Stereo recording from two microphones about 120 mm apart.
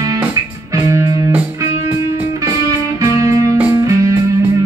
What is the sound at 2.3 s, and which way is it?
Music, 25° right (ahead or behind).